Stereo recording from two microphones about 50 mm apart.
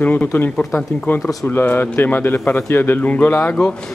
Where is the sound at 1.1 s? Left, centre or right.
Left.